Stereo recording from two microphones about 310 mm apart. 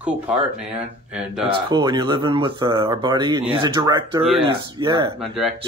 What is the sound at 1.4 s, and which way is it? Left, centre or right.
Speech, centre.